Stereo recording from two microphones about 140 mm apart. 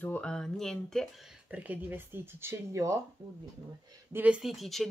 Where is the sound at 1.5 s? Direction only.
10° right (ahead or behind).